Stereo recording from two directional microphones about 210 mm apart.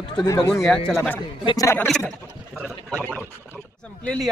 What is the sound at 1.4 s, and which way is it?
Speech, 15° left (ahead or behind).